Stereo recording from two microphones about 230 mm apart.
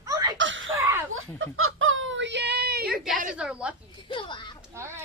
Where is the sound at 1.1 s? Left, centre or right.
Right.